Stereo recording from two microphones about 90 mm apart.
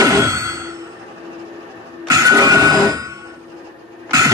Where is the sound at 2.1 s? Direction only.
35° right (ahead or behind).